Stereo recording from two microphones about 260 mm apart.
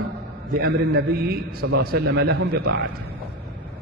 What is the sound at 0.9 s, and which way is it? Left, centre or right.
Speech, right.